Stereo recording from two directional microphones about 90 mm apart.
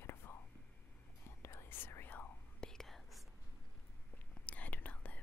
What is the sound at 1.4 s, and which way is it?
Whispering, 30° left (ahead or behind).